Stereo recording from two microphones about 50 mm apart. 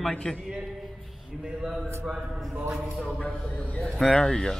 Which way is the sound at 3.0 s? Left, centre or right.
Left.